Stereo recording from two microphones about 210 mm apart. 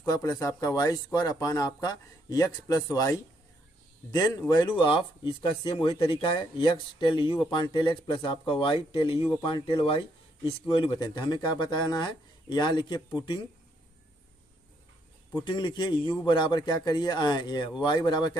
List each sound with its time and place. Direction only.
0.0 s speech: 15° left (ahead or behind)
15.3 s speech: 20° left (ahead or behind)